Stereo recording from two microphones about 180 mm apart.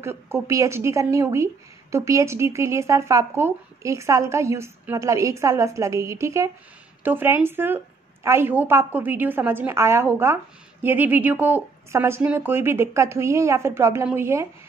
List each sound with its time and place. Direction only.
0.0 s a woman's voice: 15° right (ahead or behind)